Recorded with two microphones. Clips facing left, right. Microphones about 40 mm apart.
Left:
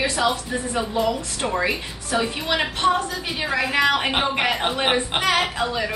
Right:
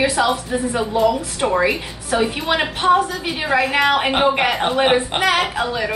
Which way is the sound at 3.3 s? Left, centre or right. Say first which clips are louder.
Right 4 dB; centre.